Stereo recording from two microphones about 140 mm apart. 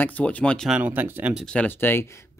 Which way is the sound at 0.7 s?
10° right (ahead or behind).